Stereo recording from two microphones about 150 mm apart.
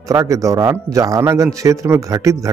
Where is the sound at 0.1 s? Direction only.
20° right (ahead or behind).